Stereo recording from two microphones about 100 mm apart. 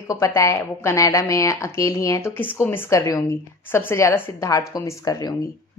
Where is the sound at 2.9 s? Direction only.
35° left (ahead or behind).